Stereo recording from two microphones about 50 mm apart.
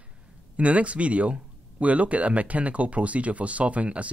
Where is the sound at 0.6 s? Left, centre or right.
Right.